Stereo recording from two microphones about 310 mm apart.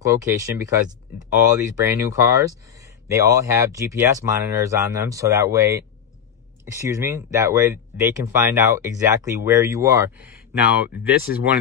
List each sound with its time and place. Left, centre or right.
0.0 s speech: centre